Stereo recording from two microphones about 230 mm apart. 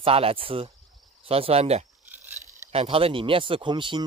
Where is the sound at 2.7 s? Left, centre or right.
Right.